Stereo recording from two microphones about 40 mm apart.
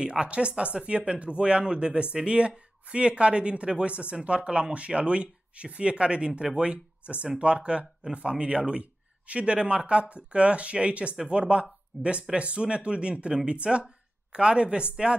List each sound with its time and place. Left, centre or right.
0.0 s speech: right